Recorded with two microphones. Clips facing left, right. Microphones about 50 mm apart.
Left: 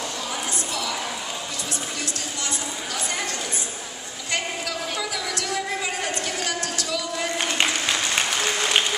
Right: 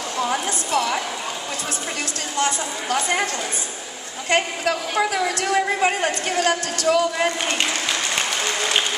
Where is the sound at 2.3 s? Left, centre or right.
Right.